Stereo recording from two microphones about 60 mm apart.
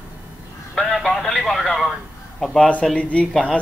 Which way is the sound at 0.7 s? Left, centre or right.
Centre.